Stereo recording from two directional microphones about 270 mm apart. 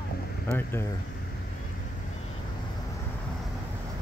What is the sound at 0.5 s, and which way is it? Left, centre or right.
Speech, centre.